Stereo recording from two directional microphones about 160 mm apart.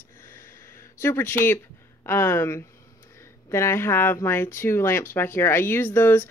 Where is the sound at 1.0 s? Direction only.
15° left (ahead or behind).